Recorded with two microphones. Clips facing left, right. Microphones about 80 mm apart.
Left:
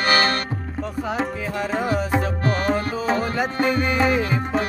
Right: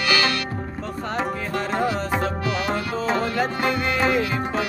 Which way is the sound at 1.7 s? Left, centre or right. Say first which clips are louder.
Left 2 dB; centre.